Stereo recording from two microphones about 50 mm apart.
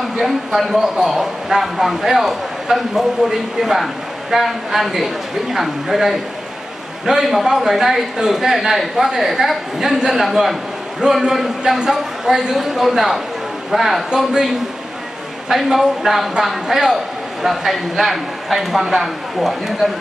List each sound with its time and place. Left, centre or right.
0.2 s a man's voice: centre
14.1 s a man's voice: centre